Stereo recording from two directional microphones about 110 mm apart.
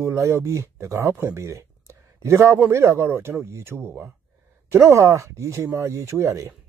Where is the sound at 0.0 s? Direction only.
25° right (ahead or behind).